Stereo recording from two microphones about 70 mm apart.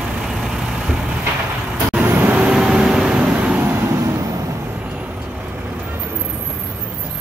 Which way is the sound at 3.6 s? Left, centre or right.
Right.